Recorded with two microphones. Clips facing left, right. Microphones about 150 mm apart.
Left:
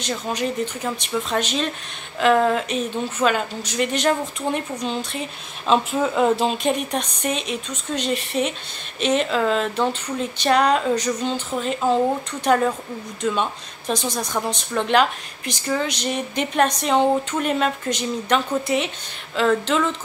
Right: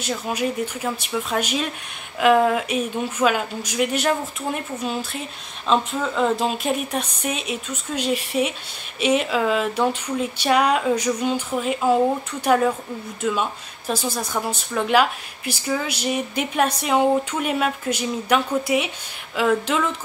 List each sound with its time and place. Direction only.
0.0 s speech: 10° right (ahead or behind)